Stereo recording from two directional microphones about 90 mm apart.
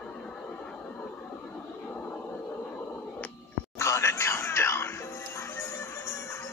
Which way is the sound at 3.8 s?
35° left (ahead or behind).